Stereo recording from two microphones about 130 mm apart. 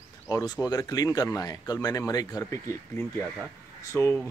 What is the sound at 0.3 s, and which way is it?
Speech, 25° left (ahead or behind).